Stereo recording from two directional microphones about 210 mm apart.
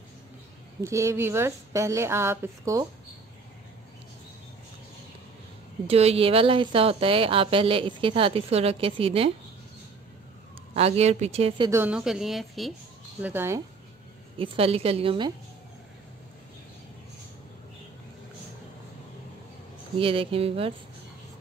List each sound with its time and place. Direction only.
0.7 s a woman's voice: 15° right (ahead or behind)
5.9 s speech: 30° right (ahead or behind)
10.7 s speech: 30° right (ahead or behind)
11.8 s a woman's voice: 5° right (ahead or behind)
14.4 s speech: 25° right (ahead or behind)
20.0 s speech: 25° right (ahead or behind)